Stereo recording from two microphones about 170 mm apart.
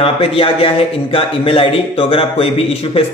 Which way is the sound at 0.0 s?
35° left (ahead or behind).